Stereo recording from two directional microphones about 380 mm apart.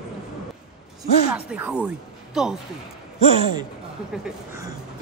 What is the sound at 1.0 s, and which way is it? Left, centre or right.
Speech, centre.